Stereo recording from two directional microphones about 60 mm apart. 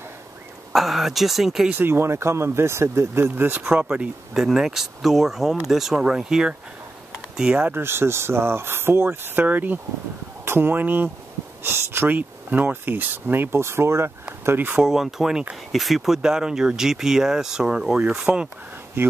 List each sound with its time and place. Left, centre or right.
0.7 s speech: centre
1.8 s speech: right
3.7 s speech: centre
7.7 s speech: right
11.6 s speech: right
12.1 s speech: right
14.8 s speech: centre
19.0 s speech: right